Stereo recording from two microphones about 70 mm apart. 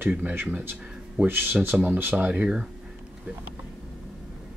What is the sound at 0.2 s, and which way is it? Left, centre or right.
Speech, right.